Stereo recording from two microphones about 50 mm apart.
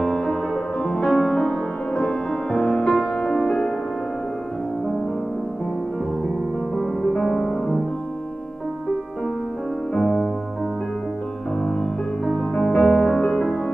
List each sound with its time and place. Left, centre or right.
0.0 s music: centre
6.7 s music: centre
9.9 s music: centre
11.6 s music: centre